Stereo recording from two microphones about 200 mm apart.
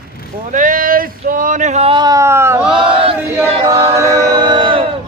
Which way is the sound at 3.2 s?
10° right (ahead or behind).